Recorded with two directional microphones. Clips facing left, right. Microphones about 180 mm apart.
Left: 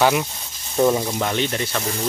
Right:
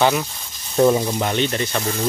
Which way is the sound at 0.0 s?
10° left (ahead or behind).